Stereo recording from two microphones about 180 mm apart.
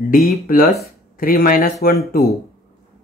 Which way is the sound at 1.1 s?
55° left (ahead or behind).